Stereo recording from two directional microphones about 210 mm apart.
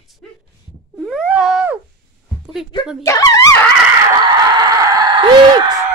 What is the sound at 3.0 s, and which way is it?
Speech, 15° left (ahead or behind).